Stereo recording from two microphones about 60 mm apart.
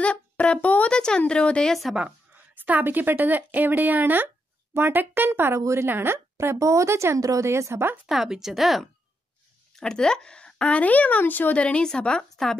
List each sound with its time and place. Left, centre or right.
0.0 s speech: left
2.0 s speech: right
5.6 s speech: right
5.9 s speech: right
6.3 s speech: right
7.2 s speech: right
7.4 s speech: right
8.1 s speech: centre
9.8 s speech: centre